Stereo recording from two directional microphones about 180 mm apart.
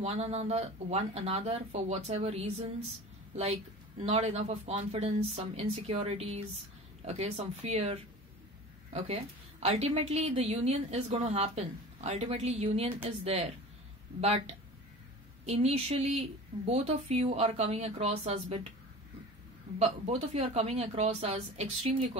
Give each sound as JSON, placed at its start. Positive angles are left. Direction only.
{"t": 0.0, "sound": "a woman's voice", "side_deg": -35}
{"t": 4.0, "sound": "a woman's voice", "side_deg": -35}
{"t": 19.8, "sound": "a woman's voice", "side_deg": -35}